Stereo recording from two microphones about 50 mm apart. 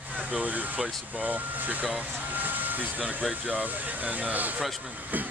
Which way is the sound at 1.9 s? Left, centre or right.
Right.